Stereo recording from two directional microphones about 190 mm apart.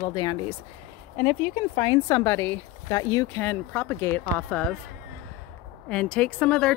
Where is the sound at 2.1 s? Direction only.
15° left (ahead or behind).